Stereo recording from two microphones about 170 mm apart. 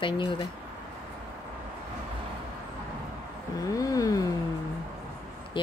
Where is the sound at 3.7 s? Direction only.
20° left (ahead or behind).